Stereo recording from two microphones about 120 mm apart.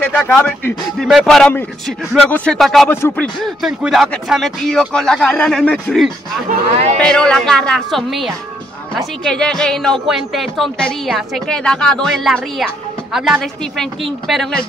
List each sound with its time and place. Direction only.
0.0 s speech: 10° left (ahead or behind)
0.9 s speech: centre (ahead or behind)